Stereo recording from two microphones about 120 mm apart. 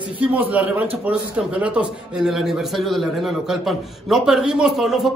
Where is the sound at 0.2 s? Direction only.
10° right (ahead or behind).